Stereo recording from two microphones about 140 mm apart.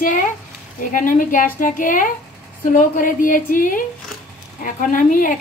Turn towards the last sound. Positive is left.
turn(degrees=80)